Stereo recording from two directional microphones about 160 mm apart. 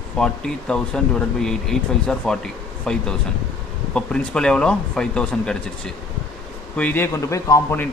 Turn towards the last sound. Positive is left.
turn(degrees=15)  # may be behind; listen again after turning